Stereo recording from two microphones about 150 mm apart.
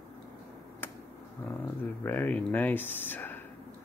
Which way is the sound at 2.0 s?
15° left (ahead or behind).